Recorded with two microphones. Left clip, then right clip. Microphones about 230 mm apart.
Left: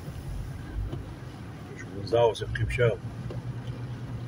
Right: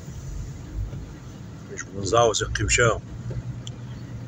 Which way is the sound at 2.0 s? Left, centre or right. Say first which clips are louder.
Right 4 dB; centre.